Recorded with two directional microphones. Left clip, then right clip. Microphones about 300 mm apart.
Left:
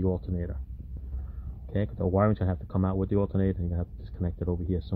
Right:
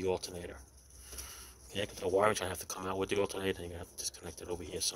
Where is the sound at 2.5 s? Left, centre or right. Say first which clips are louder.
Left 5 dB; centre.